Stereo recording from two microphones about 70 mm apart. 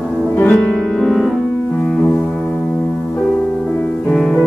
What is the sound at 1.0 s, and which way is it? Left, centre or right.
Piano, centre.